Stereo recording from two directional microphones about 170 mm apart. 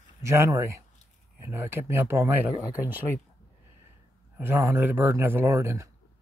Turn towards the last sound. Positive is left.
turn(degrees=-15)  # may be behind; listen again after turning